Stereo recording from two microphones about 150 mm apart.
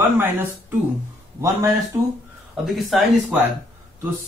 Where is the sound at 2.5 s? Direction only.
5° right (ahead or behind).